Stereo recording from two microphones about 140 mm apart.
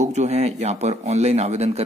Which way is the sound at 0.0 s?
55° right (ahead or behind).